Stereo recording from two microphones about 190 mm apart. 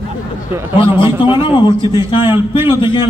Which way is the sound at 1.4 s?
25° left (ahead or behind).